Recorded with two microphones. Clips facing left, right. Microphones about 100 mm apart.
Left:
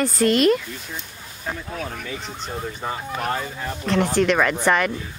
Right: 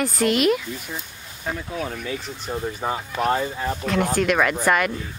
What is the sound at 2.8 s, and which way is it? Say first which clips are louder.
Speech: right 3 dB; 15° right (ahead or behind).